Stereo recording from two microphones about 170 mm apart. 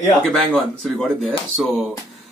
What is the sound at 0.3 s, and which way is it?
Speech, centre (ahead or behind).